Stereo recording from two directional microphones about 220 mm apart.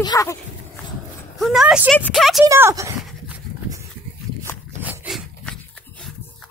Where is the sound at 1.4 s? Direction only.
Centre (ahead or behind).